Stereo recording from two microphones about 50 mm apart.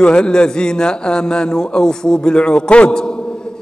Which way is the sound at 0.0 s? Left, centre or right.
Centre.